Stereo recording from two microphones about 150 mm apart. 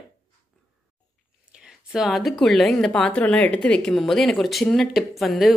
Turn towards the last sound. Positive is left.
turn(degrees=0)  # may be behind; listen again after turning